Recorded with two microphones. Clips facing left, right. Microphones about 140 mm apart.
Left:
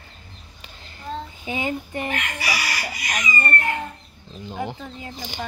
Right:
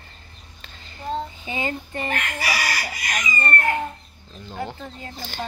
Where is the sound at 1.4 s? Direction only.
10° left (ahead or behind).